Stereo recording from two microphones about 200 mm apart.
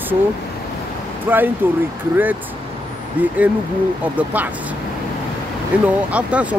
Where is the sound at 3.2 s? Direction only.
10° right (ahead or behind).